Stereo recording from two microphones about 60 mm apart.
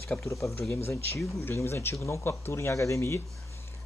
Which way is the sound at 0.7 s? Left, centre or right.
Left.